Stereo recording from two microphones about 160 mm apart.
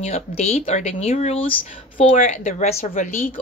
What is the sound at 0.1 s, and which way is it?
Speech, 40° left (ahead or behind).